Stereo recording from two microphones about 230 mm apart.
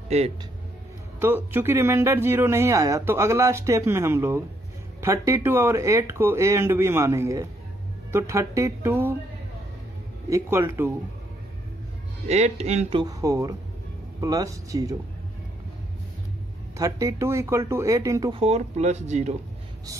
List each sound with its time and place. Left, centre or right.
0.1 s speech: right
1.2 s speech: centre
10.3 s speech: centre
12.3 s speech: right
13.0 s speech: centre
16.7 s speech: centre
18.4 s speech: right